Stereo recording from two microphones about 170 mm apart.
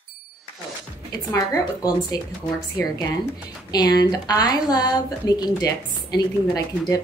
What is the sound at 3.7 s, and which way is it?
A woman's voice, 25° left (ahead or behind).